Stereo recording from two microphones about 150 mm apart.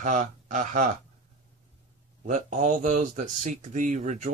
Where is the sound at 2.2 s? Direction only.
55° right (ahead or behind).